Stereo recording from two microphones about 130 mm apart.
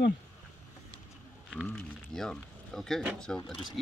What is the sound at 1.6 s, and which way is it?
Speech, 5° left (ahead or behind).